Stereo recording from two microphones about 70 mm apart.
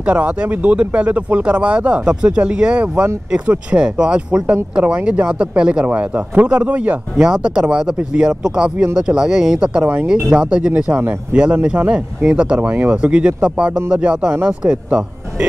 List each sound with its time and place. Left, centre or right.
0.0 s speech: centre
7.2 s speech: centre